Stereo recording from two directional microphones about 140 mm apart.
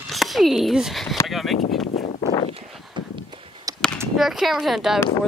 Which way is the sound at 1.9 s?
50° left (ahead or behind).